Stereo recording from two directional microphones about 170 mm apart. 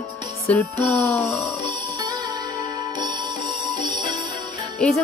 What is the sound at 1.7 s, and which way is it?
Music, 25° right (ahead or behind).